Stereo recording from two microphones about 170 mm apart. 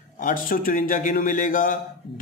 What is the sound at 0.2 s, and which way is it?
A man's voice, 55° left (ahead or behind).